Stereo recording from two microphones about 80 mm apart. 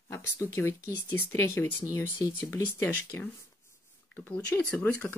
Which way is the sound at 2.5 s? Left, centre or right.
Left.